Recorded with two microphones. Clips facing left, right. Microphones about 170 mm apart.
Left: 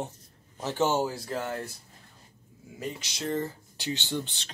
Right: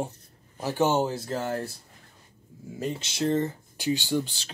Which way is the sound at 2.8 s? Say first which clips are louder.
Right 7 dB; 25° right (ahead or behind).